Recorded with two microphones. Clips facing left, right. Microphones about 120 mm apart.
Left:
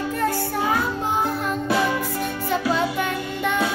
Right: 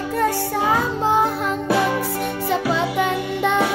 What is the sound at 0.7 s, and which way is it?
Music, 25° right (ahead or behind).